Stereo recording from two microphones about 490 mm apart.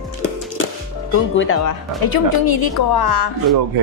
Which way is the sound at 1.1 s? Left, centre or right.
Left.